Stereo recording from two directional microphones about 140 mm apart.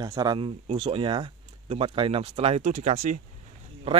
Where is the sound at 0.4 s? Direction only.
40° right (ahead or behind).